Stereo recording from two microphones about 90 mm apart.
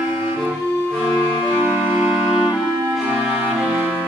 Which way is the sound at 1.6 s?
25° right (ahead or behind).